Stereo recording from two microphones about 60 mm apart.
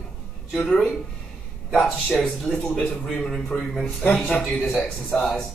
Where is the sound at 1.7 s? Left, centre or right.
Centre.